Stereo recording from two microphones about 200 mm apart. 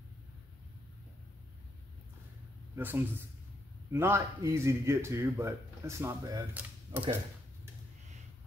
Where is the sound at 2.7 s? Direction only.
10° right (ahead or behind).